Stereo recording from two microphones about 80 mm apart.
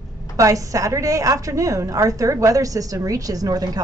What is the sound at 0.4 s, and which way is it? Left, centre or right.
A woman's voice, right.